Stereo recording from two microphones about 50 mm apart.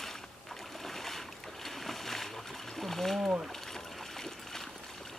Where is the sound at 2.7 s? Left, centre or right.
Centre.